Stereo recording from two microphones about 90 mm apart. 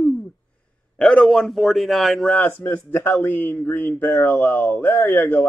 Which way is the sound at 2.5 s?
25° left (ahead or behind).